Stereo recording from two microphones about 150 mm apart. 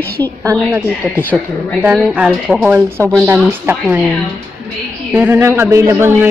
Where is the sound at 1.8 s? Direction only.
5° right (ahead or behind).